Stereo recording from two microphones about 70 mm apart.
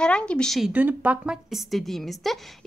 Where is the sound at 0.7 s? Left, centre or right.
Right.